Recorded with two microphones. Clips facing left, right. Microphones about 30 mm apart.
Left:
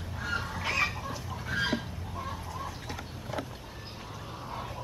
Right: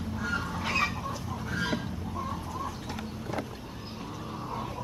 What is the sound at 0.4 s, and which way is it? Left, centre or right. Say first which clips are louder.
Fowl: right 2 dB; centre.